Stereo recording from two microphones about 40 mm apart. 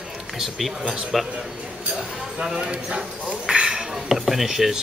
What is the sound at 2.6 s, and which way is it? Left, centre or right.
Speech, right.